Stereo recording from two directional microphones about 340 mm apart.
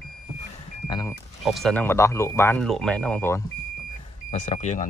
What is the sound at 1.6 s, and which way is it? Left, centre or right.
Speech, centre.